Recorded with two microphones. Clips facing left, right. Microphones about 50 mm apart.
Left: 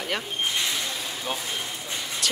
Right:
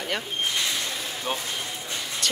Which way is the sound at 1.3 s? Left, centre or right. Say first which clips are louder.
Right 2 dB; right.